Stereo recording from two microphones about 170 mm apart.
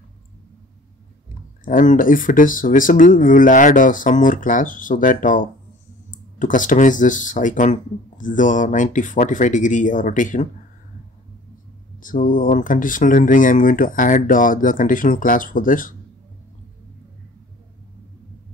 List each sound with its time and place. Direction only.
1.6 s speech: 50° left (ahead or behind)
12.0 s speech: 50° left (ahead or behind)